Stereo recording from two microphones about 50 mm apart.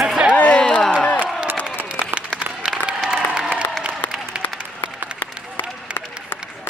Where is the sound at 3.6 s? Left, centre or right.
Left.